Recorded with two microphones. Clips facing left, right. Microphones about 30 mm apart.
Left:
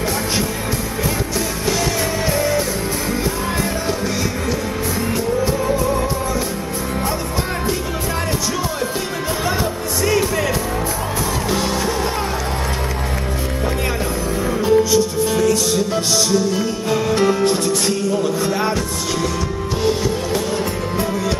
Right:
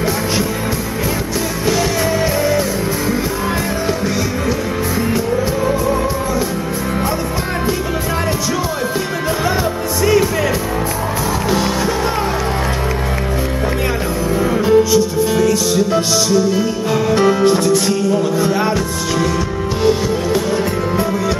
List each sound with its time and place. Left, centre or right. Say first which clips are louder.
2.3 s music: right 3 dB; centre
10.0 s music: right 4 dB; centre
14.4 s music: right 3 dB; centre
19.8 s music: right 4 dB; centre